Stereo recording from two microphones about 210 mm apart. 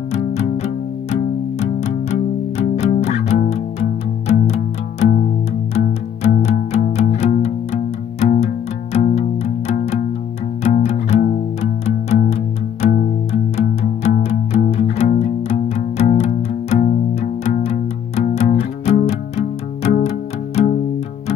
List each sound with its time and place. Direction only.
1.6 s music: 30° left (ahead or behind)
5.8 s music: 35° left (ahead or behind)
12.8 s music: 40° left (ahead or behind)
13.3 s music: 30° left (ahead or behind)